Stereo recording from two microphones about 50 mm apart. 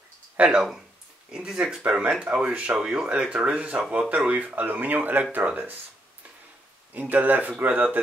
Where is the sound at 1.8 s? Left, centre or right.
Right.